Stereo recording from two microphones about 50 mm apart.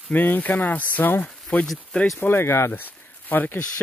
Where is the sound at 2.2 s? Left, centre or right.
Left.